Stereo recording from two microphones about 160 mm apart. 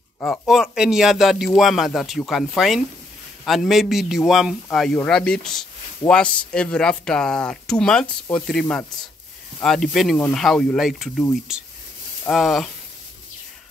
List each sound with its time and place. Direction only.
0.2 s speech: centre (ahead or behind)